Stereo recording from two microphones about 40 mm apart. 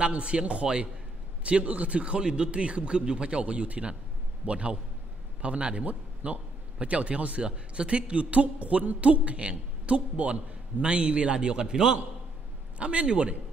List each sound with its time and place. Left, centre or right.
0.0 s a man's voice: right
12.7 s a man's voice: right